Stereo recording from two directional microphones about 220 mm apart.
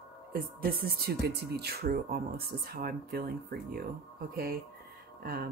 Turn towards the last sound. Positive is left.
turn(degrees=-40)  # may be behind; listen again after turning